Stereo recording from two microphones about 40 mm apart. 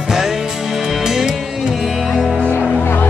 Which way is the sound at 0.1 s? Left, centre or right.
Centre.